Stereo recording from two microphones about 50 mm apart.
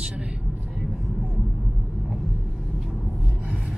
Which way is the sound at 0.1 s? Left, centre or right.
Right.